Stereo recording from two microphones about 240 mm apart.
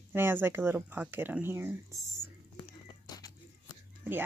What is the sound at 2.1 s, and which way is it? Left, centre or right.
Whispering, centre.